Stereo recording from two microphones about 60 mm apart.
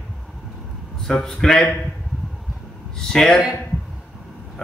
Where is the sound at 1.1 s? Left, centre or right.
Centre.